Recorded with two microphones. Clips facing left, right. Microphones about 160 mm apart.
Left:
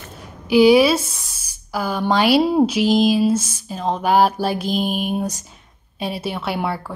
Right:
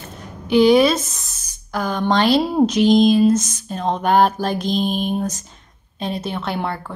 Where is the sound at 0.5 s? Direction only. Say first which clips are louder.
Left 1 dB; 5° left (ahead or behind).